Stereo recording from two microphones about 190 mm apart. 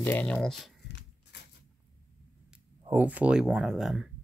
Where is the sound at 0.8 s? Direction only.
65° left (ahead or behind).